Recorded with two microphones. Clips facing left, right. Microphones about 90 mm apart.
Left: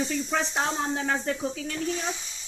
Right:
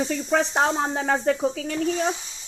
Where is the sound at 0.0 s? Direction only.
90° right.